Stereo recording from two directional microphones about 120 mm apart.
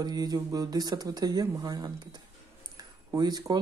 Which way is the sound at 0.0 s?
35° right (ahead or behind).